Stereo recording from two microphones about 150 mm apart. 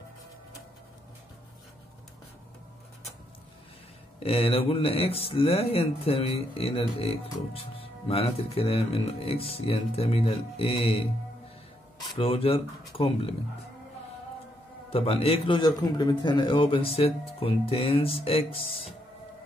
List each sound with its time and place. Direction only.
4.2 s speech: 40° left (ahead or behind)
12.2 s speech: 40° left (ahead or behind)
14.9 s speech: 40° left (ahead or behind)